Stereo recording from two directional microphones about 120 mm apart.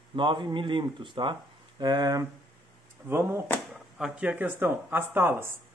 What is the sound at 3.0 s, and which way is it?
Speech, 20° right (ahead or behind).